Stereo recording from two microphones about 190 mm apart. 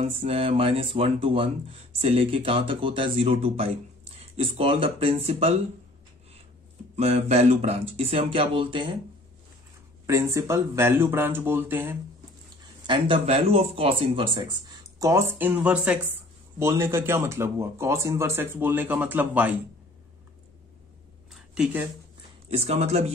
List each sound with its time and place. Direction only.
0.0 s speech: 30° right (ahead or behind)
7.0 s speech: 35° right (ahead or behind)
10.0 s speech: 15° right (ahead or behind)
12.8 s speech: 25° right (ahead or behind); by 19.5 s 10° right (ahead or behind)
21.3 s a sound: centre (ahead or behind)
22.5 s speech: 35° right (ahead or behind)